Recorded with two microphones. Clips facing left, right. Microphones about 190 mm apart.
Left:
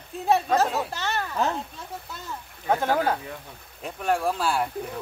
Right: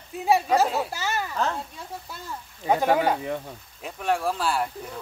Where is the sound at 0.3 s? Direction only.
10° right (ahead or behind).